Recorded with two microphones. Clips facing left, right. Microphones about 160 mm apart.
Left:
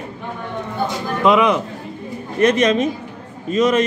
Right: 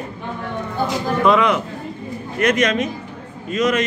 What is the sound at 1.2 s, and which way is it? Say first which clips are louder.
A man's voice: left 2 dB; 20° left (ahead or behind).